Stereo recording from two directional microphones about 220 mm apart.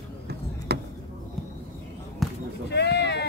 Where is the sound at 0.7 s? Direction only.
50° right (ahead or behind).